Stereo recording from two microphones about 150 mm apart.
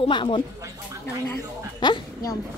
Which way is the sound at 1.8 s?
30° left (ahead or behind).